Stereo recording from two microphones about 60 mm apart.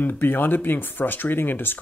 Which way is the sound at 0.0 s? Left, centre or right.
Left.